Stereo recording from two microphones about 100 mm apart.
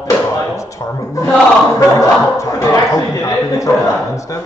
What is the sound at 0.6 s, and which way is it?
A man's voice, 30° left (ahead or behind).